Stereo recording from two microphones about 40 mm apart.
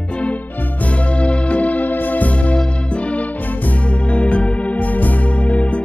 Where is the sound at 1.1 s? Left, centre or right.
Left.